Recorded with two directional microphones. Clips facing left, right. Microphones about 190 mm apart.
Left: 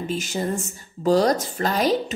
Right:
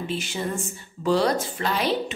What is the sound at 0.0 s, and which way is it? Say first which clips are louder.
A woman's voice: left 3 dB; 40° left (ahead or behind).